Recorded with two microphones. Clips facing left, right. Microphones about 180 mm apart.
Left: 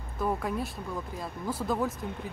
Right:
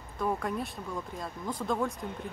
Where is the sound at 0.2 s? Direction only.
Centre (ahead or behind).